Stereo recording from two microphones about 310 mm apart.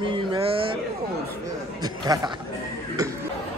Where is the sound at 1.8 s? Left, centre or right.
Centre.